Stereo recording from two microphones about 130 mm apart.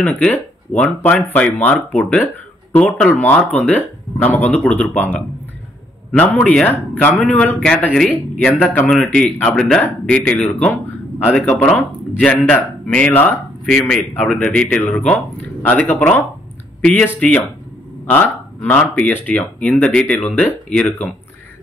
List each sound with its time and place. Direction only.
0.0 s speech: 10° left (ahead or behind)
8.6 s speech: 15° left (ahead or behind)
13.7 s speech: centre (ahead or behind)